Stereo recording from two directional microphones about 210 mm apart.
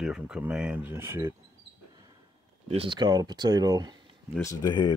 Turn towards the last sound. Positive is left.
turn(degrees=20)  # may be behind; listen again after turning